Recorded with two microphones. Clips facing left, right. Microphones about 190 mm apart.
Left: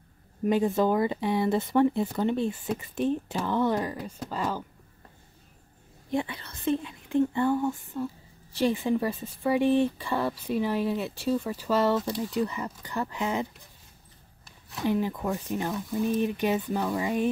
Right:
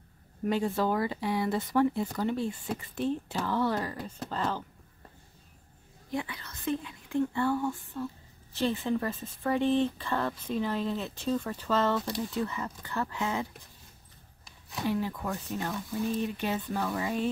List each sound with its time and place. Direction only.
0.5 s speech: 20° left (ahead or behind)
6.1 s speech: 25° left (ahead or behind)
14.9 s speech: 15° left (ahead or behind)